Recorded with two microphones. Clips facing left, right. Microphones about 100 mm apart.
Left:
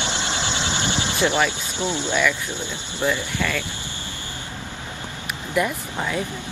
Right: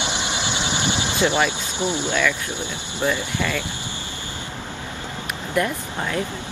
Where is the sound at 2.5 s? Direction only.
15° right (ahead or behind).